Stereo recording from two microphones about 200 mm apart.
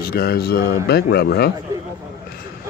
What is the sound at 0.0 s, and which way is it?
Speech, 50° left (ahead or behind).